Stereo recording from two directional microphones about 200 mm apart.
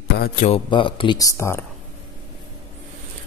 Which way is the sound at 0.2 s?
40° left (ahead or behind).